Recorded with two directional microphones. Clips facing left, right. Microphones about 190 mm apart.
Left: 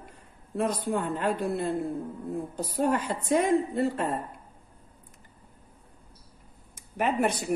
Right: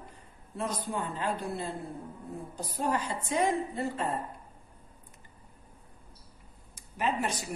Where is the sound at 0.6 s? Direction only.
55° left (ahead or behind).